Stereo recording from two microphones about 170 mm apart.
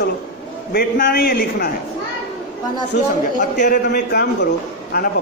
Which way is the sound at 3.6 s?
60° left (ahead or behind).